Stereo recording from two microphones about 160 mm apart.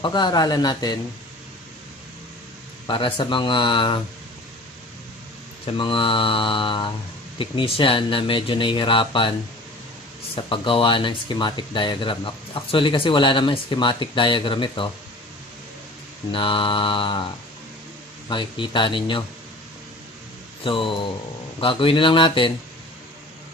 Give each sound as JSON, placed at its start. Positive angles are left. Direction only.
{"t": 0.0, "sound": "a man's voice", "side_deg": 30}
{"t": 3.2, "sound": "speech", "side_deg": 30}
{"t": 5.7, "sound": "speech", "side_deg": 35}
{"t": 10.3, "sound": "speech", "side_deg": 30}
{"t": 16.3, "sound": "speech", "side_deg": 30}
{"t": 18.3, "sound": "speech", "side_deg": 30}
{"t": 20.6, "sound": "speech", "side_deg": 30}